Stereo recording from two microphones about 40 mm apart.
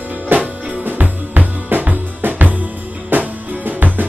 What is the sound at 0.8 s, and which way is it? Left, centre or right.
Music, right.